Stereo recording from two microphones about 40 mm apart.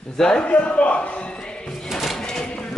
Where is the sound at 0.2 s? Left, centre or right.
Left.